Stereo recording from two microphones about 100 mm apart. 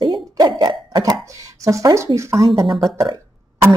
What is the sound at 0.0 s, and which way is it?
Cough, 50° right (ahead or behind).